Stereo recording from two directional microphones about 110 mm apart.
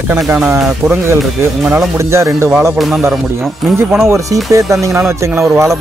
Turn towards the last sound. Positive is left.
turn(degrees=-20)  # may be behind; listen again after turning